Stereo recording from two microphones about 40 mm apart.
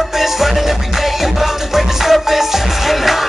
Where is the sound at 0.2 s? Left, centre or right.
Centre.